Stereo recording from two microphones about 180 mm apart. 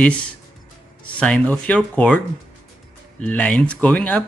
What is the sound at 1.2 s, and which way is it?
Speech, 5° left (ahead or behind).